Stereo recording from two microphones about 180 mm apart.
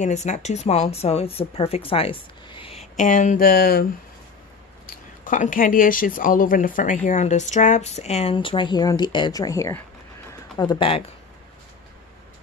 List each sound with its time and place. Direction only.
0.0 s speech: 40° left (ahead or behind); by 3.8 s 55° left (ahead or behind)
4.8 s speech: 45° left (ahead or behind); by 11.1 s 30° left (ahead or behind)